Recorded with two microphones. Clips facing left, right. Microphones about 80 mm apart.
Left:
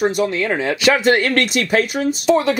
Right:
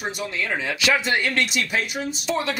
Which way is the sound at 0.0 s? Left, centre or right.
Left.